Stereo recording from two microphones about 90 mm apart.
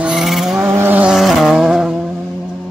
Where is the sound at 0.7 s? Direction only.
25° right (ahead or behind).